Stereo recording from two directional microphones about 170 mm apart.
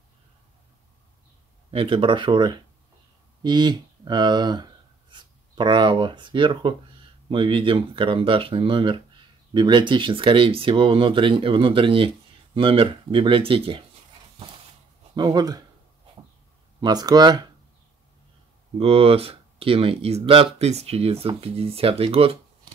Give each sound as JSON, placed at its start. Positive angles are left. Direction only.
{"t": 1.7, "sound": "speech", "side_deg": -30}
{"t": 15.1, "sound": "speech", "side_deg": -25}
{"t": 16.8, "sound": "speech", "side_deg": -25}
{"t": 18.8, "sound": "speech", "side_deg": -35}